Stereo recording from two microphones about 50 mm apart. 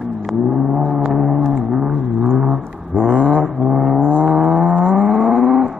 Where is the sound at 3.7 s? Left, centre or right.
Centre.